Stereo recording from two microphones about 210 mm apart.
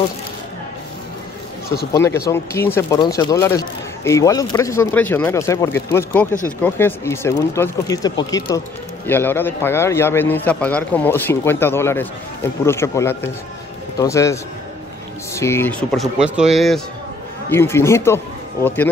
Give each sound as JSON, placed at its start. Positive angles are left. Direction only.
{"t": 2.0, "sound": "speech", "side_deg": 15}
{"t": 17.5, "sound": "speech", "side_deg": 10}